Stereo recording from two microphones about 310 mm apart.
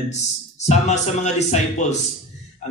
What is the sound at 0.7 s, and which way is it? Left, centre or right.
Speech, left.